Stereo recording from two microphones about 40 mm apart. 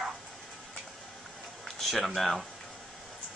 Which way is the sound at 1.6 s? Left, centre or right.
Centre.